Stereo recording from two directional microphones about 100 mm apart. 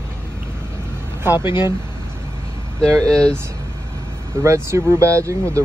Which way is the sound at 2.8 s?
10° left (ahead or behind).